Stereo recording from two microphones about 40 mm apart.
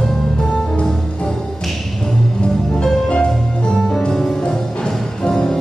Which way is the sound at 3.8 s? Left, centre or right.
Centre.